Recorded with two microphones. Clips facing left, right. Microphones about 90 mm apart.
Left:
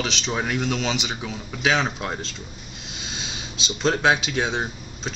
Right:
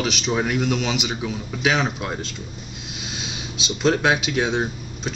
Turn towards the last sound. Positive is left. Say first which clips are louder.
# right 3 dB
turn(degrees=0)  # may be behind; listen again after turning